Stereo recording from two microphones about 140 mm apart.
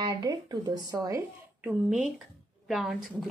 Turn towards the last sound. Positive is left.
turn(degrees=-5)  # may be behind; listen again after turning